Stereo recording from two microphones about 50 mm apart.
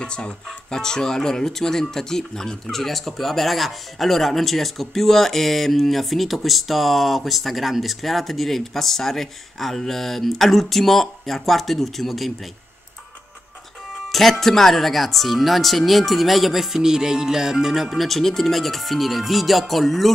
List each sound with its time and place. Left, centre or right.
0.0 s speech: centre
14.0 s music: centre
14.4 s speech: centre